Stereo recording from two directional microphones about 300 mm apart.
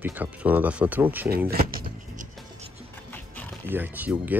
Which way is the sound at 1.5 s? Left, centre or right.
Right.